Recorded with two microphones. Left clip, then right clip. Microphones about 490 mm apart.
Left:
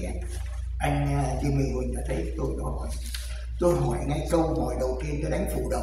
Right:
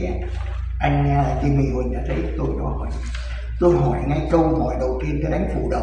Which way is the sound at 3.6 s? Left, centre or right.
Left.